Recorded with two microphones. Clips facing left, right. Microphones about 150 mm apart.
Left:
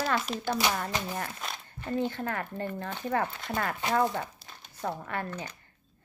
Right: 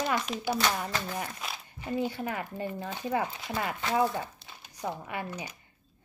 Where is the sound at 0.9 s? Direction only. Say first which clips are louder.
Left 1 dB; 15° left (ahead or behind).